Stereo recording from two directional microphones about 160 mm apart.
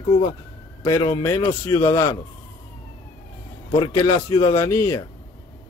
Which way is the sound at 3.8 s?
25° left (ahead or behind).